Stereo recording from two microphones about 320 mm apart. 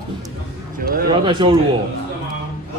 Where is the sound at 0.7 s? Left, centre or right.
Right.